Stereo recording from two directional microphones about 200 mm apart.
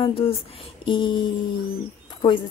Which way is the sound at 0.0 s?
30° left (ahead or behind).